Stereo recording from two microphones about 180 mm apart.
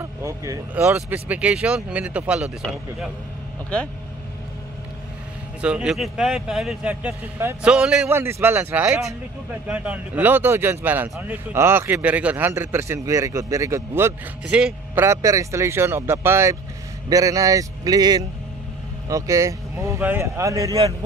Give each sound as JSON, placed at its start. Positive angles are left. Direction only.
{"t": 0.0, "sound": "a man's voice", "side_deg": -15}
{"t": 5.6, "sound": "a man's voice", "side_deg": -5}